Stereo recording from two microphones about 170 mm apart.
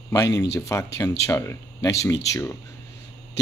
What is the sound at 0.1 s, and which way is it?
Speech, 20° left (ahead or behind).